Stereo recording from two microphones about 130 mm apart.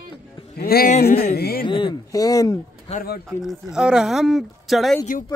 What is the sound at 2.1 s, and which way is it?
Speech, 25° left (ahead or behind).